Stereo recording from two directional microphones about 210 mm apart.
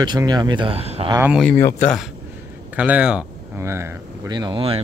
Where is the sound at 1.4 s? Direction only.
10° left (ahead or behind).